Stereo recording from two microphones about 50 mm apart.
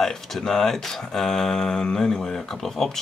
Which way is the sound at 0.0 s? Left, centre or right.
Centre.